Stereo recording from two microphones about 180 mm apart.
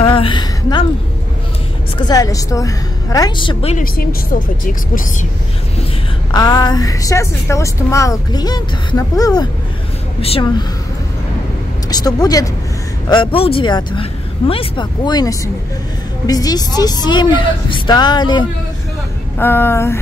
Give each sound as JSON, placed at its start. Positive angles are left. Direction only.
{"t": 0.0, "sound": "a woman's voice", "side_deg": 30}
{"t": 2.0, "sound": "a woman's voice", "side_deg": 20}
{"t": 3.7, "sound": "speech", "side_deg": 55}
{"t": 6.3, "sound": "a woman's voice", "side_deg": 20}
{"t": 10.2, "sound": "a woman's voice", "side_deg": 35}
{"t": 11.9, "sound": "a woman's voice", "side_deg": 20}
{"t": 19.3, "sound": "a sound", "side_deg": 10}